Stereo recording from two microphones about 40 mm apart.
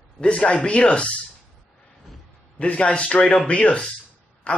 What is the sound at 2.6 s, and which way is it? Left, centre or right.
A man's voice, left.